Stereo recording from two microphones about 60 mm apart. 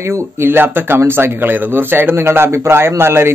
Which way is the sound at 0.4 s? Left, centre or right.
Right.